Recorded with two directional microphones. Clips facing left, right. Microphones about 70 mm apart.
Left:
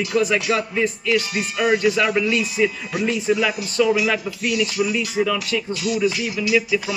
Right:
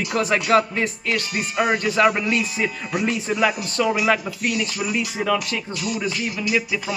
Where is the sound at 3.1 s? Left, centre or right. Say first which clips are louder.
Left 2 dB; right.